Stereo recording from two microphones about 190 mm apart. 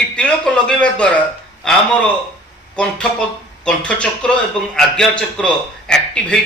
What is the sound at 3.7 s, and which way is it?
A man's voice, 5° left (ahead or behind).